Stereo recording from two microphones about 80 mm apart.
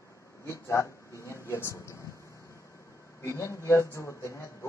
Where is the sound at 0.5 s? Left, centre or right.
Left.